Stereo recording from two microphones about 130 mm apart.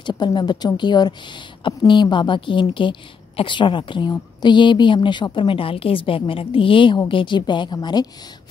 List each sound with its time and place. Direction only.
0.0 s a woman's voice: 35° left (ahead or behind)